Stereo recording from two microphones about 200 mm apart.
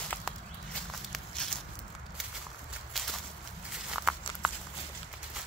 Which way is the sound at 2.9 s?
Centre (ahead or behind).